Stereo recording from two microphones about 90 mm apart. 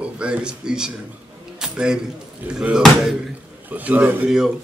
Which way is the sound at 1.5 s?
5° right (ahead or behind).